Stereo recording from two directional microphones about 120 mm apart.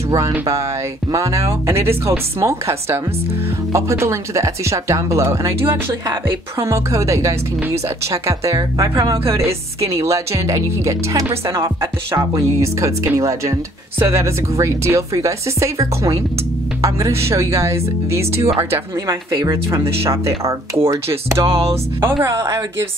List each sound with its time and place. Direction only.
1.1 s speech: 25° right (ahead or behind)